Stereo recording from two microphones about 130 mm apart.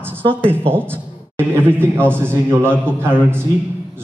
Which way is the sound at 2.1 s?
20° right (ahead or behind).